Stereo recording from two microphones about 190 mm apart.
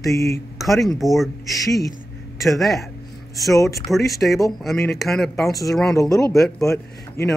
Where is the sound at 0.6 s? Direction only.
Centre (ahead or behind).